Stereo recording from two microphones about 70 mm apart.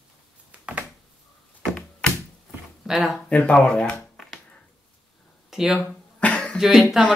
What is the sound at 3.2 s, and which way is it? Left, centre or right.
Speech, centre.